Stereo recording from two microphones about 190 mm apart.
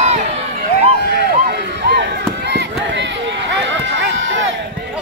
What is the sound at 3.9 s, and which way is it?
Run, 85° right.